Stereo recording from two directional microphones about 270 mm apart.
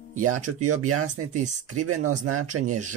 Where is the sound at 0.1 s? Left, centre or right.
Right.